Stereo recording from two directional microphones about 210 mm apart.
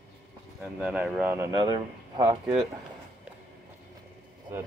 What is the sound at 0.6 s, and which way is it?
Speech, 5° right (ahead or behind).